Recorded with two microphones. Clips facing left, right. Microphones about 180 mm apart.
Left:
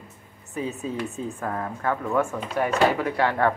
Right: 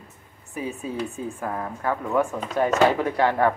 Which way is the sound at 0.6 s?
10° right (ahead or behind).